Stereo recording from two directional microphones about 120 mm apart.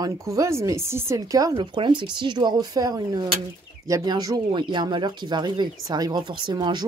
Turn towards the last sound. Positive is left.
turn(degrees=-40)  # may be behind; listen again after turning